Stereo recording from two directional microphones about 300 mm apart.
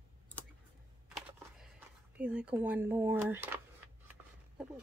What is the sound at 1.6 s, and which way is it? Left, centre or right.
Speech, centre.